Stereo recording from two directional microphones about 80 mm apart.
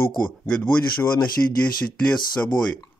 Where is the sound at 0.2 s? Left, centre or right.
Centre.